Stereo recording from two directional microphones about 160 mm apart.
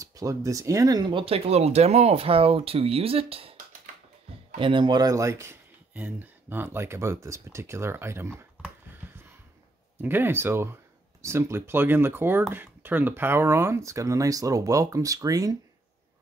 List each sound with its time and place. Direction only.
0.0 s speech: 20° right (ahead or behind); by 3.5 s 35° right (ahead or behind)
4.6 s speech: 30° right (ahead or behind); by 8.7 s 15° right (ahead or behind)
9.9 s speech: 15° right (ahead or behind)